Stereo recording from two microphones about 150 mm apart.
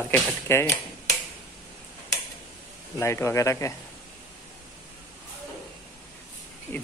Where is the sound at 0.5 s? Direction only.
15° left (ahead or behind).